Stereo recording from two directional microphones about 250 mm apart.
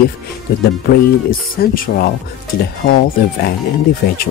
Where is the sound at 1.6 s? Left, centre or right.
Left.